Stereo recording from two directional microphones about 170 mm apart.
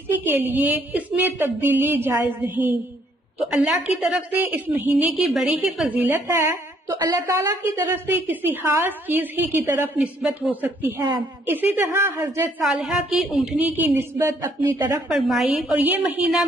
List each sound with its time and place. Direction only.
0.1 s a woman's voice: 10° right (ahead or behind)
13.8 s a woman's voice: 15° right (ahead or behind)
15.0 s a woman's voice: centre (ahead or behind)